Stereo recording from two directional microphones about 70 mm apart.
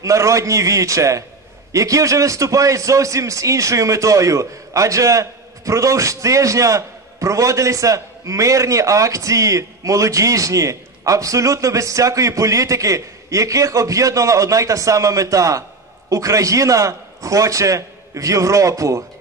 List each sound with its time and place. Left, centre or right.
0.0 s a man's voice: right